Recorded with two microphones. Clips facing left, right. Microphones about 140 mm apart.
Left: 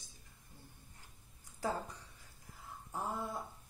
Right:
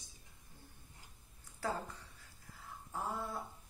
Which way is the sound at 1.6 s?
15° left (ahead or behind).